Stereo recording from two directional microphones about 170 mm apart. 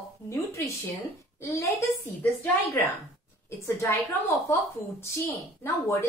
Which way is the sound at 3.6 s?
15° left (ahead or behind).